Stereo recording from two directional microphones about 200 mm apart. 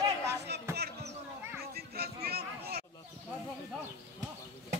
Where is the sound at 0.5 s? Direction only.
55° right (ahead or behind).